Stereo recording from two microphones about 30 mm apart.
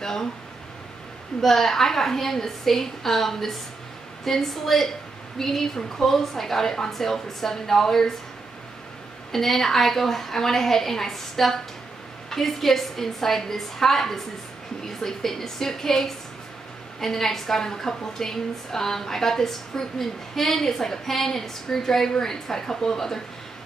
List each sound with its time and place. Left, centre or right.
0.0 s a woman's voice: centre
1.4 s a woman's voice: centre
9.3 s a woman's voice: centre